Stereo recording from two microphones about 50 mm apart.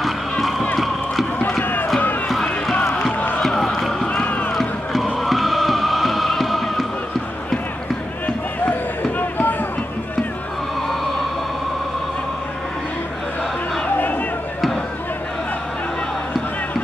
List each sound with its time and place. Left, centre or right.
0.0 s run: centre
1.6 s run: left
2.9 s music: centre
3.4 s a sound: centre
4.1 s run: left
4.6 s music: centre
9.2 s music: left
13.9 s a sound: left